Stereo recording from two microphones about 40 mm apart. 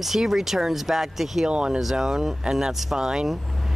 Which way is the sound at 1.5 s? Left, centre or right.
Right.